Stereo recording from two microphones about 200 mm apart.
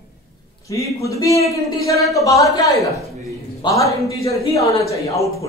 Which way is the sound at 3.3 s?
15° left (ahead or behind).